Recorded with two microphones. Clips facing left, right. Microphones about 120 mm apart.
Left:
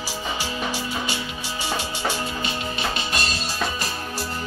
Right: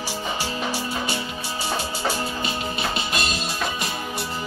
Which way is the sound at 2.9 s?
30° left (ahead or behind).